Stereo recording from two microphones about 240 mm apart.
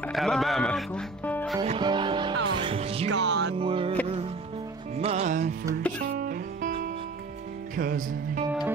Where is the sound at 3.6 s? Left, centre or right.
Right.